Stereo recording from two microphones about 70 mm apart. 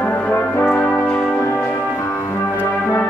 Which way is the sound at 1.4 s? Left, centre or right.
Left.